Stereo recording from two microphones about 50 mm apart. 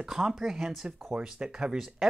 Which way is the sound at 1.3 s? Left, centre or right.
Centre.